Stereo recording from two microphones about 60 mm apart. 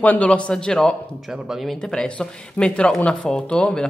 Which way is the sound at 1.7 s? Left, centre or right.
Centre.